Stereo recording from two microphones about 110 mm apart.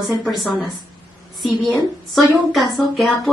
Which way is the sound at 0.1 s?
Centre (ahead or behind).